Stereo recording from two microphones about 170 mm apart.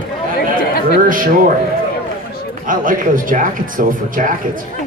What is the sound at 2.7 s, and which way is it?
A man's voice, 50° right (ahead or behind).